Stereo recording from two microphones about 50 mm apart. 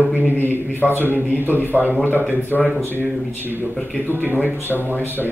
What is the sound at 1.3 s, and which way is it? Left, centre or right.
Speech, right.